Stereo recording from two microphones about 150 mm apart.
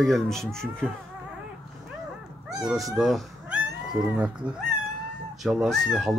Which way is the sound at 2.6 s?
Centre (ahead or behind).